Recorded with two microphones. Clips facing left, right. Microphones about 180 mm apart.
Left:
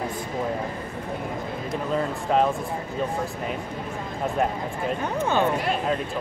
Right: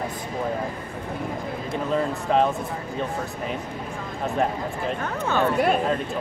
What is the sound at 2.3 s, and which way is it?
Speech, centre (ahead or behind).